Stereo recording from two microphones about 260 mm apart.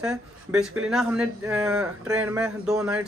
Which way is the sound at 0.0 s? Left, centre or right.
Centre.